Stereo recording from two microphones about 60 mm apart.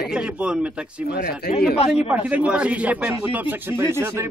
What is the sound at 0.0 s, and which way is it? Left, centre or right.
Speech, centre.